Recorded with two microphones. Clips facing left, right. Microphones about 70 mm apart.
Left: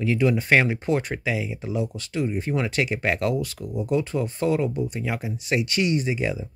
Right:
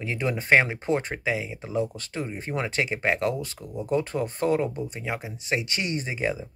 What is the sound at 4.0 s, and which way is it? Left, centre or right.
Speech, right.